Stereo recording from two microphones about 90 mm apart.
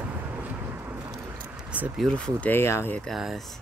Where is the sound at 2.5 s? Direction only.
25° left (ahead or behind).